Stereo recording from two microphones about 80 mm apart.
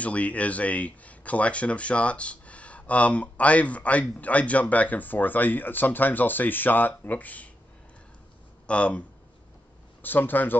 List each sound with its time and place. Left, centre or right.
0.0 s speech: centre
8.6 s speech: centre
10.0 s speech: left